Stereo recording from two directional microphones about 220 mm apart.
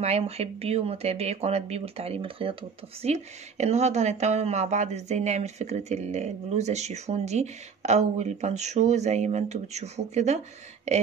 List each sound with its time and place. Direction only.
0.0 s speech: 30° right (ahead or behind)